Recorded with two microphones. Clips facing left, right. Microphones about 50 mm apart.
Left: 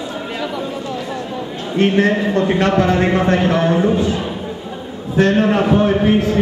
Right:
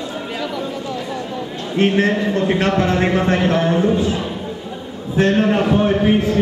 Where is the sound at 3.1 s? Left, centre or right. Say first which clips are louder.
Left 2 dB; left.